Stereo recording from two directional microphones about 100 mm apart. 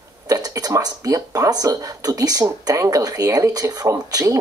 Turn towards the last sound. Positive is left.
turn(degrees=-35)  # may be behind; listen again after turning